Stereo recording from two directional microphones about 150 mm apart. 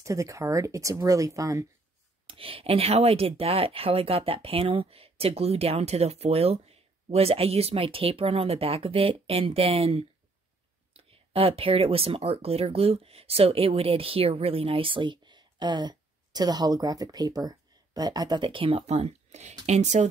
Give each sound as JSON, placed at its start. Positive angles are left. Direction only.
{"t": 0.0, "sound": "speech", "side_deg": -20}
{"t": 2.2, "sound": "speech", "side_deg": -35}